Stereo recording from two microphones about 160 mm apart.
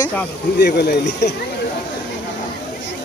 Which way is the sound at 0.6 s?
90° left.